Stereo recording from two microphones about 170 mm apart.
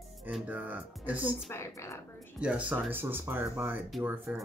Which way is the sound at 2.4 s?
5° right (ahead or behind).